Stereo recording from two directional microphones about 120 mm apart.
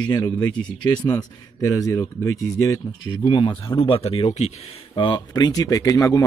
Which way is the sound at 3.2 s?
40° left (ahead or behind).